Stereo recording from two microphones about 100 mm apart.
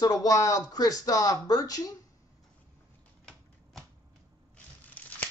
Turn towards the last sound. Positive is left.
turn(degrees=15)  # may be behind; listen again after turning